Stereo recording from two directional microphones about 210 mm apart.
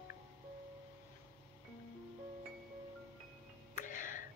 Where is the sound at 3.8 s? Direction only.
40° left (ahead or behind).